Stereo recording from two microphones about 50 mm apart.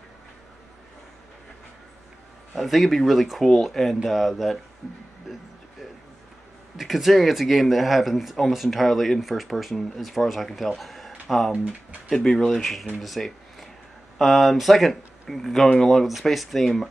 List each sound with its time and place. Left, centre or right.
2.6 s speech: centre
6.8 s speech: centre
11.5 s speech: right
12.1 s speech: centre